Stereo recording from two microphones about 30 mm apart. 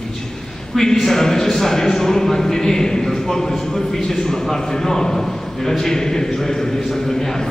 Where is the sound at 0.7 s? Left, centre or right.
Centre.